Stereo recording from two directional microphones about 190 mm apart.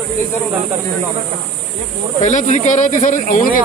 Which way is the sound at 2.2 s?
40° left (ahead or behind).